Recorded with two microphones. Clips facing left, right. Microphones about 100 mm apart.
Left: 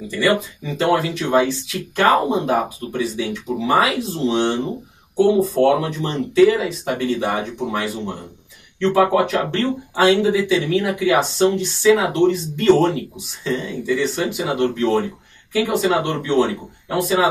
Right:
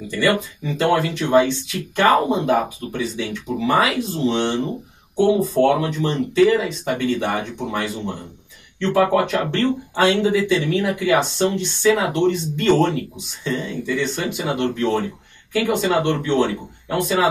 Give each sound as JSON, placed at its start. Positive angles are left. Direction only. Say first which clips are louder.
{"t": 0.2, "sound": "speech", "louder": "left 1 dB", "side_deg": 5}
{"t": 0.8, "sound": "speech", "louder": "even", "side_deg": 20}
{"t": 1.3, "sound": "speech", "louder": "right 2 dB", "side_deg": 5}